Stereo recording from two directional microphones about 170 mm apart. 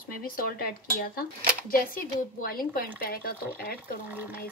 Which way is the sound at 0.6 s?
60° left (ahead or behind).